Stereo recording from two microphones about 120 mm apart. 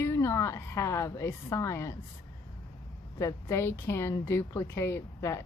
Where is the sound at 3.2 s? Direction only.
25° left (ahead or behind).